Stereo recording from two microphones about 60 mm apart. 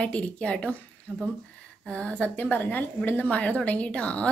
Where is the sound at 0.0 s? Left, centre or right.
Centre.